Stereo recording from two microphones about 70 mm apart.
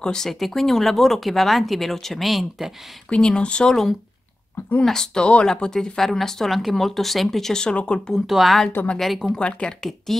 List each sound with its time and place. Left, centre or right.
0.0 s speech: centre
3.1 s speech: centre
8.3 s speech: centre
9.4 s speech: centre